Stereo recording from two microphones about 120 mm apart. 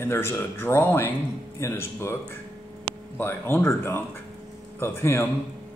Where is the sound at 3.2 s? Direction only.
20° left (ahead or behind).